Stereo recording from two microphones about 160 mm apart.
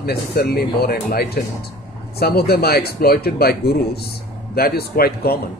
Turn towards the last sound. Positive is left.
turn(degrees=75)  # may be behind; listen again after turning